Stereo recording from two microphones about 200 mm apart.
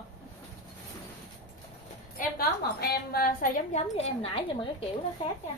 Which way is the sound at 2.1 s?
50° left (ahead or behind).